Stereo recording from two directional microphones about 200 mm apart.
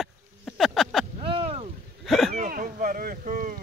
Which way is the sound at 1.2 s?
30° right (ahead or behind).